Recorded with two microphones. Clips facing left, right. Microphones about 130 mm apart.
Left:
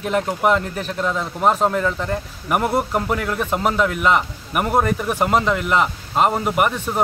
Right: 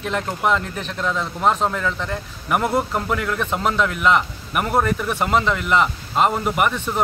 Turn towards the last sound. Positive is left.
turn(degrees=10)  # may be behind; listen again after turning